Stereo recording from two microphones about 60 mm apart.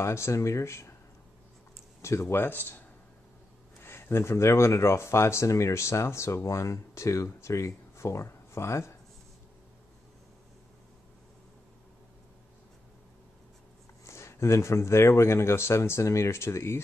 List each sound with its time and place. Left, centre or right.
0.0 s speech: left
2.0 s speech: left
2.3 s speech: left
3.8 s speech: left
14.0 s speech: left